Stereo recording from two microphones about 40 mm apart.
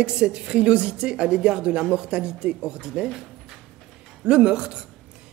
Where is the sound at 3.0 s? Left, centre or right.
Centre.